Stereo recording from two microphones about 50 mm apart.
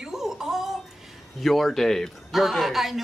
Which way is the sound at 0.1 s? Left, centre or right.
Centre.